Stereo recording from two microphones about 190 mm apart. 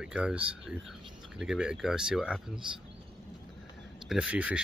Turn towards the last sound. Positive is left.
turn(degrees=-5)  # may be behind; listen again after turning